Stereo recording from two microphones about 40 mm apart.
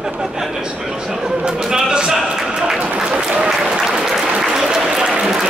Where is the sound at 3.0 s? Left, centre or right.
Centre.